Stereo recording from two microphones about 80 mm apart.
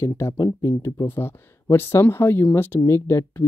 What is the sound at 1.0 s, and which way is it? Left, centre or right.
Speech, left.